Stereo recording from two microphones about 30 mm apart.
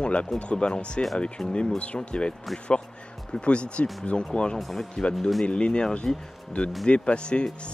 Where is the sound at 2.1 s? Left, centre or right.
Left.